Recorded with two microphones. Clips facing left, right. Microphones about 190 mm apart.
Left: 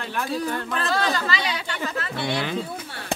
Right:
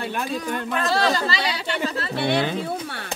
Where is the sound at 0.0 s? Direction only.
20° right (ahead or behind).